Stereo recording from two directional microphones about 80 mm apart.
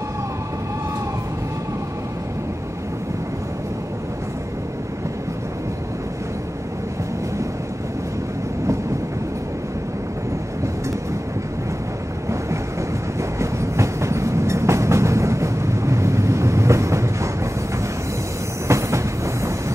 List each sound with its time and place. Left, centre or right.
13.2 s train: right
18.7 s train: right